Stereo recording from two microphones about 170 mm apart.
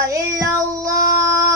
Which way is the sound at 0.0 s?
20° right (ahead or behind).